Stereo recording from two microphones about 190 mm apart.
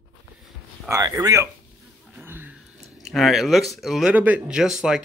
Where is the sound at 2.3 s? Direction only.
10° right (ahead or behind).